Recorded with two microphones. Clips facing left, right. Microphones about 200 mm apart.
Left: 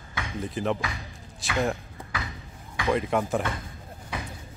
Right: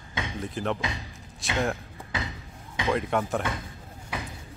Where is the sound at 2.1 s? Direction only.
25° right (ahead or behind).